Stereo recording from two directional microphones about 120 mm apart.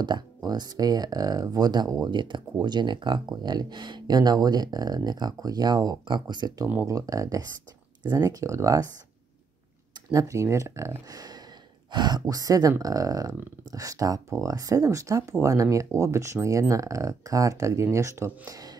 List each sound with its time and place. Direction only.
0.0 s speech: 35° right (ahead or behind)
10.1 s speech: 25° right (ahead or behind)